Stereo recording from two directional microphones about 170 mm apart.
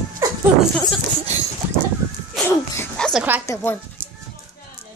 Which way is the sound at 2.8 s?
5° left (ahead or behind).